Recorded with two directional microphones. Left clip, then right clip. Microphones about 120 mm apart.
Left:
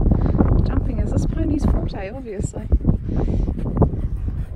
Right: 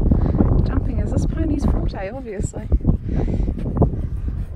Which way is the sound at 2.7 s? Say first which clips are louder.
Even; 35° right (ahead or behind).